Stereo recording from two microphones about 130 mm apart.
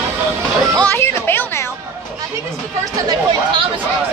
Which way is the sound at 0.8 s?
15° left (ahead or behind).